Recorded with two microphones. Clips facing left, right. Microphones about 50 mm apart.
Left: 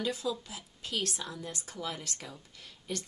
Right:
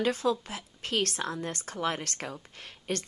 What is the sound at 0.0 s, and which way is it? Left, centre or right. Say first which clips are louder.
A woman's voice: right 6 dB; right.